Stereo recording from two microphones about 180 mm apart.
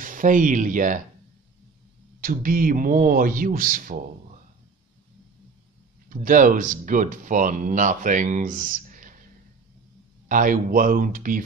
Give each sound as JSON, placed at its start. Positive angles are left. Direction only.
{"t": 0.0, "sound": "speech", "side_deg": -45}
{"t": 2.2, "sound": "speech", "side_deg": -50}
{"t": 6.0, "sound": "speech", "side_deg": -50}
{"t": 10.2, "sound": "speech", "side_deg": -50}